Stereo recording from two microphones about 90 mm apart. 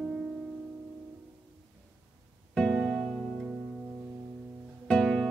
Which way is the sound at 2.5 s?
5° left (ahead or behind).